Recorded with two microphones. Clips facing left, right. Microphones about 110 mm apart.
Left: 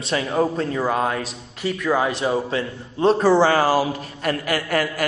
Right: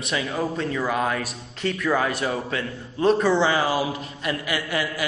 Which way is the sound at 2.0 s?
25° left (ahead or behind).